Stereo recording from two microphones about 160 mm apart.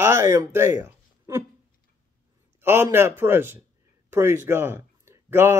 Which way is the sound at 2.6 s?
15° right (ahead or behind).